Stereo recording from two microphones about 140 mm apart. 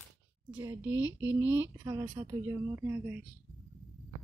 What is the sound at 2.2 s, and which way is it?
Speech, 20° right (ahead or behind).